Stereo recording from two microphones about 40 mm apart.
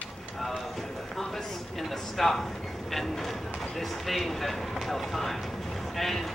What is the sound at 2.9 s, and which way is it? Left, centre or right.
Speech, centre.